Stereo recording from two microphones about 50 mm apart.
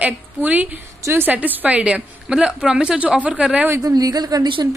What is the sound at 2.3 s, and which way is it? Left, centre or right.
Speech, centre.